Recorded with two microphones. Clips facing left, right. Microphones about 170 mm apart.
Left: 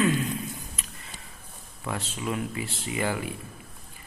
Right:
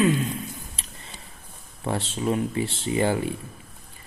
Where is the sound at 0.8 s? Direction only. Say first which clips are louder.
Even; 30° right (ahead or behind).